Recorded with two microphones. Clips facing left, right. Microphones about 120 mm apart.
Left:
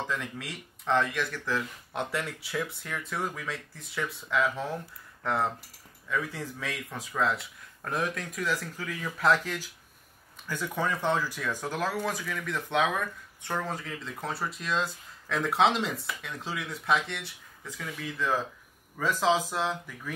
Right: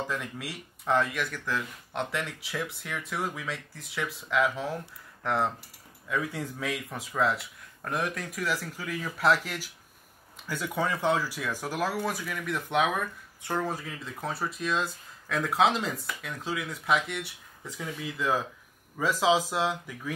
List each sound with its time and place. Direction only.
0.0 s speech: 15° right (ahead or behind)
6.0 s speech: 10° right (ahead or behind)